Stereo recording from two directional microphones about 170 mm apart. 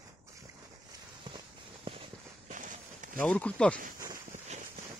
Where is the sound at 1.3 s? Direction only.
25° right (ahead or behind).